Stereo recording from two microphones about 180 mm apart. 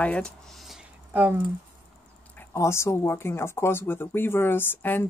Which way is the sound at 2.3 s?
15° left (ahead or behind).